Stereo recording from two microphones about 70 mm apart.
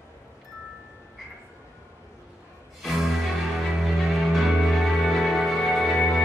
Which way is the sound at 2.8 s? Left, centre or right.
Centre.